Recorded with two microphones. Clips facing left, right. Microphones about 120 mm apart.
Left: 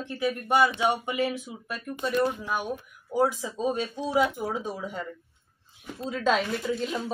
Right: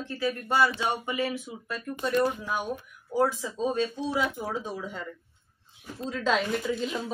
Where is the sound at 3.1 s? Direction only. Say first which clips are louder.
Left 1 dB; 15° left (ahead or behind).